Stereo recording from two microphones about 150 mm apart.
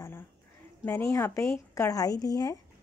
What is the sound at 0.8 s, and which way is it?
Speech, 20° left (ahead or behind).